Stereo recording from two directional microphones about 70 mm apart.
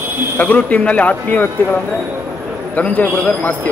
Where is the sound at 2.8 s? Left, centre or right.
Left.